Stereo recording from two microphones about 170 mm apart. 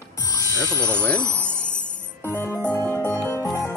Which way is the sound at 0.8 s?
15° right (ahead or behind).